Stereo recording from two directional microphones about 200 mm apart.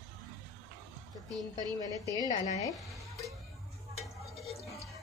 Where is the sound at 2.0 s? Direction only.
15° left (ahead or behind).